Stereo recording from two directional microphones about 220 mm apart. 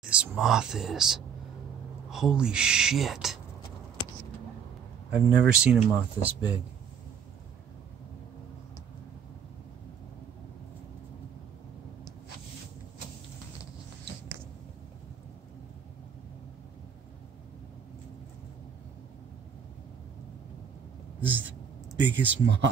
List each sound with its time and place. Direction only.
0.1 s speech: 5° right (ahead or behind)
5.1 s speech: 5° right (ahead or behind)
21.3 s a sound: 60° right (ahead or behind)
22.3 s speech: 55° right (ahead or behind)